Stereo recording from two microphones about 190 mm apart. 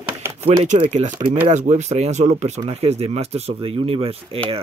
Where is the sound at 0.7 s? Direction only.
35° right (ahead or behind).